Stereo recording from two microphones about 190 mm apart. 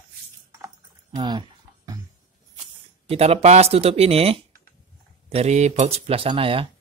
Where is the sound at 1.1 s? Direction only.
20° right (ahead or behind).